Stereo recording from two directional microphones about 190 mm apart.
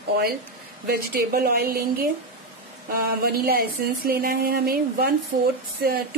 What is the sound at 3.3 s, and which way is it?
A woman's voice, 50° right (ahead or behind).